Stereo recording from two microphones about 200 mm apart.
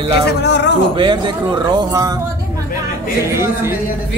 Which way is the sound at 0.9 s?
25° right (ahead or behind).